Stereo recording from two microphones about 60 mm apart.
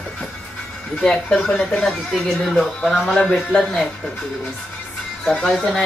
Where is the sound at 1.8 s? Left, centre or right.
Centre.